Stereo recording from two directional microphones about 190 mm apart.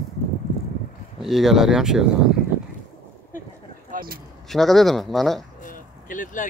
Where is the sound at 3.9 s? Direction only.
50° right (ahead or behind).